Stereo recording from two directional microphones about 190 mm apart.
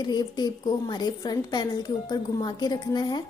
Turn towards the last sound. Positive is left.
turn(degrees=20)  # may be behind; listen again after turning